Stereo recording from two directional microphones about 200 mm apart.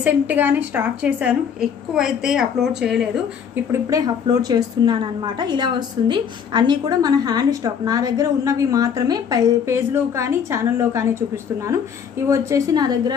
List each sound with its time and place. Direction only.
0.0 s a woman's voice: 10° right (ahead or behind)
3.9 s a woman's voice: 20° right (ahead or behind)